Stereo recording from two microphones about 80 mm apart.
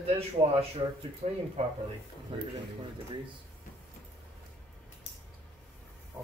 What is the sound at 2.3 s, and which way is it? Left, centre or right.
Speech, right.